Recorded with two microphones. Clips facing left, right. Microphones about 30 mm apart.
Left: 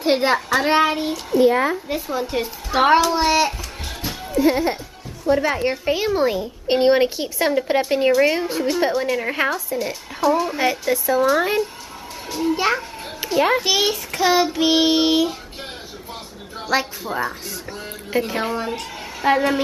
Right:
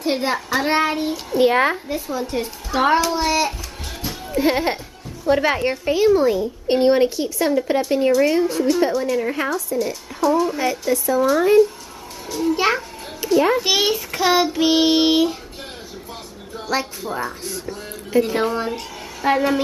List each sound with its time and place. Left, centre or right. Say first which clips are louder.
0.0 s child singing: left 3 dB; left
0.5 s child singing: even; centre
1.4 s speech: right 1 dB; right
2.0 s speech: left 1 dB; centre
4.3 s speech: left 1 dB; right
5.3 s speech: right 1 dB; centre
5.7 s speech: right 4 dB; centre
12.5 s child singing: right 2 dB; centre
13.2 s a child's voice: right 1 dB; centre
13.7 s child singing: right 1 dB; centre
16.6 s child singing: left 2 dB; centre
18.2 s speech: right 3 dB; centre
19.2 s child singing: even; centre